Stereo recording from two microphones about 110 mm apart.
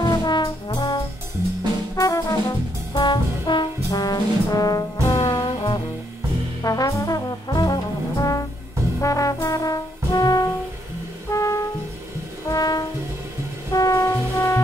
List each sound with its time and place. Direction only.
0.0 s brass instrument: 40° left (ahead or behind)
2.9 s brass instrument: 40° left (ahead or behind)
6.6 s brass instrument: 30° left (ahead or behind)
11.2 s music: 30° left (ahead or behind)
13.7 s brass instrument: 30° left (ahead or behind)